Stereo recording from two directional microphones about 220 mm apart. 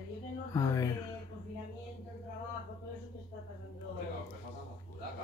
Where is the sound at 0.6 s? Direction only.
15° left (ahead or behind).